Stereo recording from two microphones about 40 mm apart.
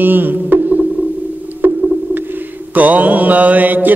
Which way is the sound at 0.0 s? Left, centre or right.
Right.